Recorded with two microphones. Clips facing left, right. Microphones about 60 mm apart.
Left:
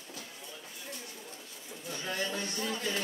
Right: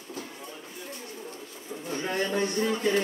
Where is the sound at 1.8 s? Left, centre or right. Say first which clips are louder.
Right 6 dB; right.